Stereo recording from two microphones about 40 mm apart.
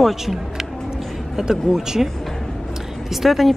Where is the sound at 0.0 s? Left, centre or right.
Centre.